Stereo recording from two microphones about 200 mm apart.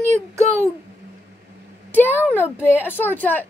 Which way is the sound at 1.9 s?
10° left (ahead or behind).